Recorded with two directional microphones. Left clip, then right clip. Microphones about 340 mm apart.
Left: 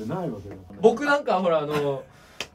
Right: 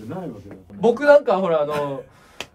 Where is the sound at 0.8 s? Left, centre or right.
Centre.